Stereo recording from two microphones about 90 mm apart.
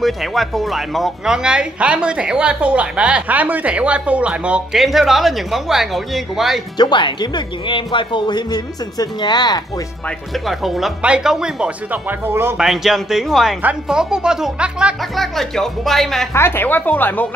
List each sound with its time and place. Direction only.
0.0 s speech: centre (ahead or behind)
4.7 s speech: centre (ahead or behind)
6.8 s speech: 60° left (ahead or behind)
10.4 s speech: centre (ahead or behind); by 12.5 s 25° right (ahead or behind)
12.5 s speech: 5° right (ahead or behind)
15.1 s speech: 5° left (ahead or behind)
16.3 s speech: 25° left (ahead or behind)